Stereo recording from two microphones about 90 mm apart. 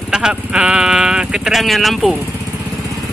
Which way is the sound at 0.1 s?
10° right (ahead or behind).